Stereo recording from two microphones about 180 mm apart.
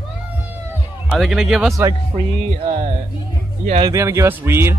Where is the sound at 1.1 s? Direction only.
Centre (ahead or behind).